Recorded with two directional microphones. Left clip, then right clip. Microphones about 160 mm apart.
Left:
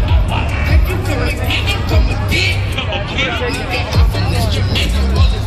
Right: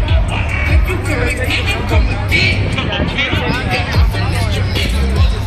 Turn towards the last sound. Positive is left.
turn(degrees=-5)  # may be behind; listen again after turning